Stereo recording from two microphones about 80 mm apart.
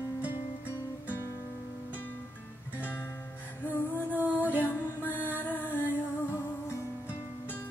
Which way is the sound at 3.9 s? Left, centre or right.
Centre.